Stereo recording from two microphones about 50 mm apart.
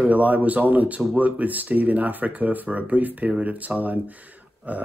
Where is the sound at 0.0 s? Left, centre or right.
Right.